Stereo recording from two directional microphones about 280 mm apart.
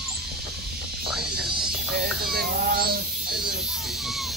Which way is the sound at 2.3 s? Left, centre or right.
Right.